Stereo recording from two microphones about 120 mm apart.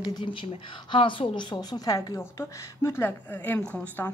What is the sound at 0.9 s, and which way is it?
A woman's voice, 45° left (ahead or behind).